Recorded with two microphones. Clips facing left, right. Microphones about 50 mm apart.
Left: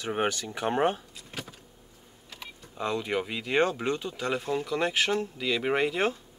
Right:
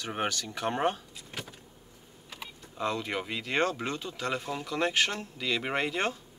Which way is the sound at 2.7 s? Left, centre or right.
Centre.